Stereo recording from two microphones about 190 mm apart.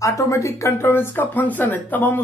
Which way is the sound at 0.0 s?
15° left (ahead or behind).